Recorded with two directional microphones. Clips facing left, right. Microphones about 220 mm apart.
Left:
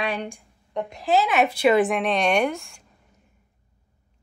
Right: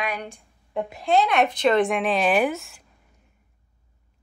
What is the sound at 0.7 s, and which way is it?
A woman's voice, centre (ahead or behind).